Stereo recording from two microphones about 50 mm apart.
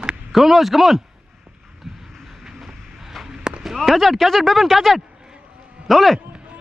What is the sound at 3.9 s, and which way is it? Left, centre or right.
A man's voice, centre.